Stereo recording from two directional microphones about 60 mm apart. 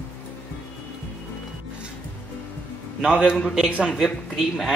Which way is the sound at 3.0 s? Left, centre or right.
Centre.